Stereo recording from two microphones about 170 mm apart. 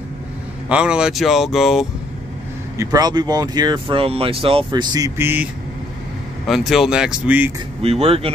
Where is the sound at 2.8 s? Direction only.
20° right (ahead or behind).